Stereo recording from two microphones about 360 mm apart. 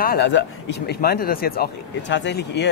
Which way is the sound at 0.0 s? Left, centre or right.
Left.